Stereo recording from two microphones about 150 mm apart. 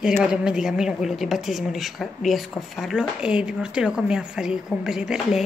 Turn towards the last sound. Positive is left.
turn(degrees=-5)  # may be behind; listen again after turning